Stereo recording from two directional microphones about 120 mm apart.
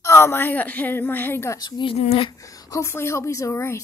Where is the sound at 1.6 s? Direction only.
40° left (ahead or behind).